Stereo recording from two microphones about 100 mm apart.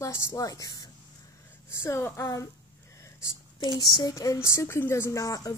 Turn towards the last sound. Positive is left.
turn(degrees=35)  # may be behind; listen again after turning